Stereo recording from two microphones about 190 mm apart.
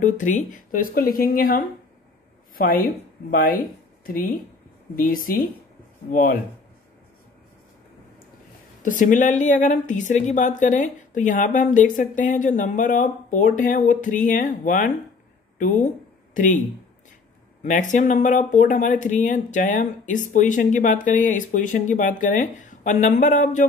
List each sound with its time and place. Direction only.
0.0 s speech: 40° left (ahead or behind)
8.8 s speech: 45° left (ahead or behind)
17.6 s speech: 40° left (ahead or behind)